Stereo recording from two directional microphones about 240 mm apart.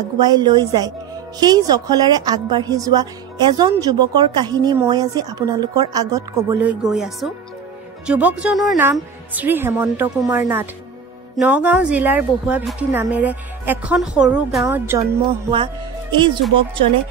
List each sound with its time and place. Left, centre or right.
0.2 s a woman's voice: centre
15.2 s music: right